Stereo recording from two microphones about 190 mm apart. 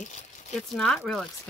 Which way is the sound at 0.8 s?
Centre (ahead or behind).